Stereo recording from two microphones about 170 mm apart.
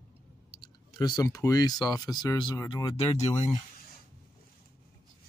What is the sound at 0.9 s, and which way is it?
Speech, 25° left (ahead or behind).